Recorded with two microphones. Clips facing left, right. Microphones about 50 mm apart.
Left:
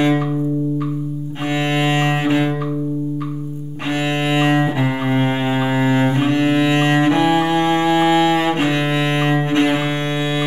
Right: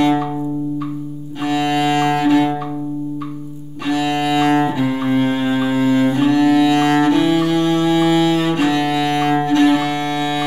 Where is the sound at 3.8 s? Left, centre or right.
Left.